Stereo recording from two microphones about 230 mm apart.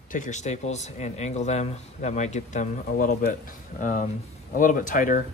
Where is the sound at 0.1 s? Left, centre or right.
Left.